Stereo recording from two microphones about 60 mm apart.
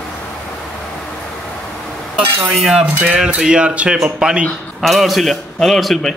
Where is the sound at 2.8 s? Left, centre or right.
Right.